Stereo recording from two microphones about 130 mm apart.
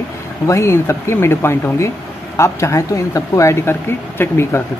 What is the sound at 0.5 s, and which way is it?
Speech, 20° left (ahead or behind).